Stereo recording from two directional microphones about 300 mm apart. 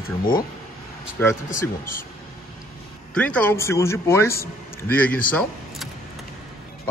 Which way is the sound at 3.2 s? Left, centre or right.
Centre.